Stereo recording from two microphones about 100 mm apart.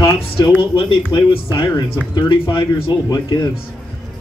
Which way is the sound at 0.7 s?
70° left (ahead or behind).